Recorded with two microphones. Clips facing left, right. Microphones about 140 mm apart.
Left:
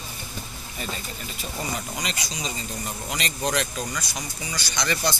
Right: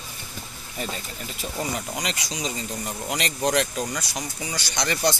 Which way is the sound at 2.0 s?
75° right (ahead or behind).